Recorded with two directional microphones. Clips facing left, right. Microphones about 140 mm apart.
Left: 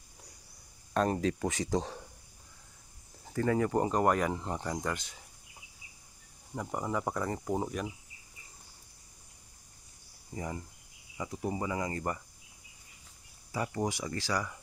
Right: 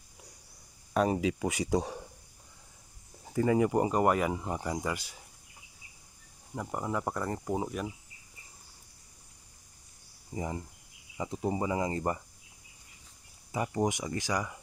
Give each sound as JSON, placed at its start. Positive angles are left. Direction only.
{"t": 0.9, "sound": "speech", "side_deg": -5}
{"t": 3.3, "sound": "speech", "side_deg": -10}
{"t": 6.5, "sound": "speech", "side_deg": 0}
{"t": 10.3, "sound": "speech", "side_deg": -20}
{"t": 13.5, "sound": "speech", "side_deg": -20}